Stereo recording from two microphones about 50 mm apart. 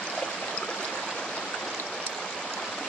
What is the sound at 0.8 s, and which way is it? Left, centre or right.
Stream, centre.